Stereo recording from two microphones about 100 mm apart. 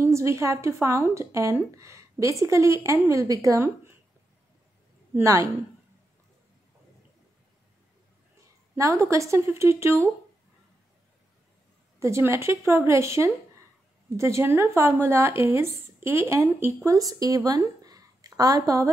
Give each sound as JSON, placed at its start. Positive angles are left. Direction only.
{"t": 0.0, "sound": "speech", "side_deg": -30}
{"t": 5.2, "sound": "speech", "side_deg": -35}
{"t": 8.7, "sound": "speech", "side_deg": -30}
{"t": 12.0, "sound": "speech", "side_deg": -30}